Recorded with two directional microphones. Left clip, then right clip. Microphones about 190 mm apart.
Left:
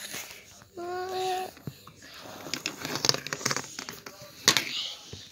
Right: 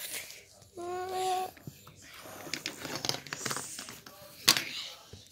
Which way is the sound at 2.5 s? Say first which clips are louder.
Left 4 dB; 35° left (ahead or behind).